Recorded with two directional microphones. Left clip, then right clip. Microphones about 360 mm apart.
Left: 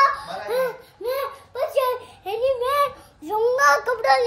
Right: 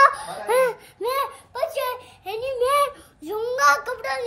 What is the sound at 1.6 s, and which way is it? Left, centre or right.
A child's voice, centre.